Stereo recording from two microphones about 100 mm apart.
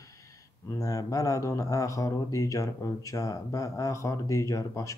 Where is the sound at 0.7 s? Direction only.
35° left (ahead or behind).